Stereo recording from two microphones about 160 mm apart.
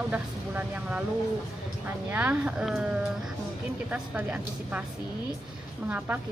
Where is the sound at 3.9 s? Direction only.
10° right (ahead or behind).